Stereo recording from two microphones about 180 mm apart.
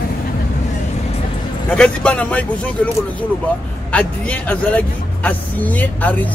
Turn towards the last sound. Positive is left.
turn(degrees=10)  # may be behind; listen again after turning